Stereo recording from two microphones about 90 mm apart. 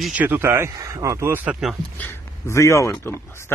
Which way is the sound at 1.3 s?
20° right (ahead or behind).